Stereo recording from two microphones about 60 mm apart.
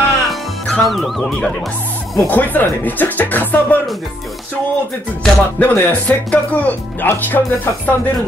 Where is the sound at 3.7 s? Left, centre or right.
Left.